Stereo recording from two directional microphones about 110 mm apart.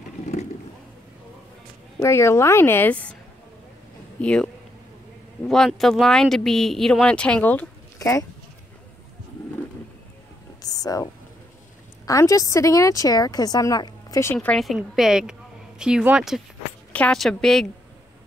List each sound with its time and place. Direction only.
2.0 s a woman's voice: 25° left (ahead or behind)
4.2 s speech: 10° left (ahead or behind)
8.0 s speech: 30° left (ahead or behind)
10.6 s a sound: 35° left (ahead or behind)
12.1 s a woman's voice: 30° left (ahead or behind)
14.2 s speech: 15° left (ahead or behind)
14.8 s speech: 5° right (ahead or behind)
16.9 s a woman's voice: 10° left (ahead or behind)